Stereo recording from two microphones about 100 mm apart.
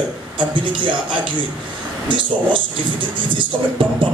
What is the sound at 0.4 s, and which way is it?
Speech, 55° right (ahead or behind).